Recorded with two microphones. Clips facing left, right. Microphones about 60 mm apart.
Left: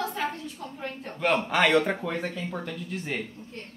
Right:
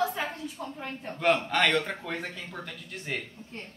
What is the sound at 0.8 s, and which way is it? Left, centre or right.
Speech, centre.